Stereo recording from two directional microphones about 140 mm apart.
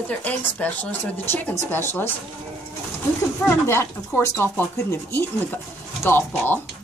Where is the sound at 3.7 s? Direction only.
15° left (ahead or behind).